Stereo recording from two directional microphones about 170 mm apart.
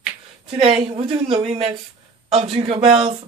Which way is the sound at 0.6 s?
35° right (ahead or behind).